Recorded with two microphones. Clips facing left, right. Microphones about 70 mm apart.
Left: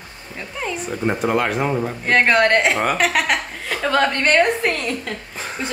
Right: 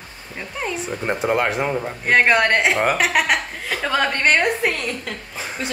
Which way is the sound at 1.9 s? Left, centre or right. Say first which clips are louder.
Right 2 dB; centre.